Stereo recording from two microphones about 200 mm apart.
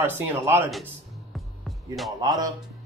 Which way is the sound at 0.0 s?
10° right (ahead or behind).